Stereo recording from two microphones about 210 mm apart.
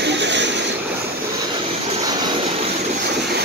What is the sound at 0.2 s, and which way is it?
Vehicle, 55° right (ahead or behind).